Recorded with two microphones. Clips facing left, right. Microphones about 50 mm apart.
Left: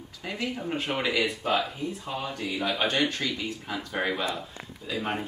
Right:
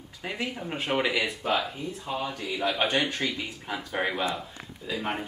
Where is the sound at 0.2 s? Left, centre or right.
Centre.